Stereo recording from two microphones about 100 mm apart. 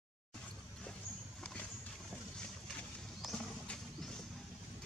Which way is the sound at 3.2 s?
5° left (ahead or behind).